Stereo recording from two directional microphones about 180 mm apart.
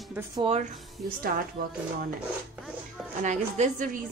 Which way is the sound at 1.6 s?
55° right (ahead or behind).